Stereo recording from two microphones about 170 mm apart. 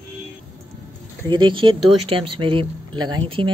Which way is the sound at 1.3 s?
30° right (ahead or behind).